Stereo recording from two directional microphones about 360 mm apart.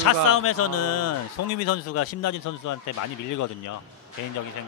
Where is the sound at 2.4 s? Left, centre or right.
Left.